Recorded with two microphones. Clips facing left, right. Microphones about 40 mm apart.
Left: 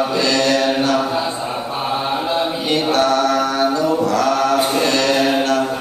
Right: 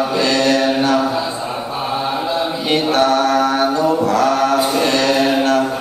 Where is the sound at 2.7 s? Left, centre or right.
Right.